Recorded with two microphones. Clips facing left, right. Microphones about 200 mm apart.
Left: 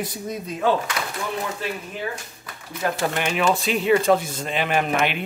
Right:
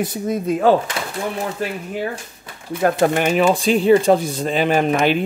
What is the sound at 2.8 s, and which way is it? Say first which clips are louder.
Speech: right 8 dB; 50° right (ahead or behind).